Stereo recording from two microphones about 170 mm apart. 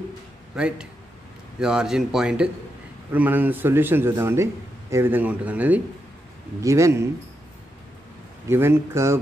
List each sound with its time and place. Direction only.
0.6 s a man's voice: 5° right (ahead or behind)
8.5 s a man's voice: 15° right (ahead or behind)